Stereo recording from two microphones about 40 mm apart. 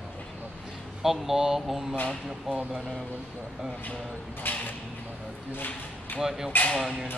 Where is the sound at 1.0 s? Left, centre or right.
Centre.